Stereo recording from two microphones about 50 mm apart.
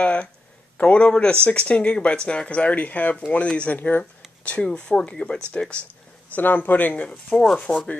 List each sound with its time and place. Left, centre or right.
0.0 s a sound: left
0.7 s speech: left
4.5 s speech: left
6.3 s speech: left
7.1 s speech: left
7.6 s speech: centre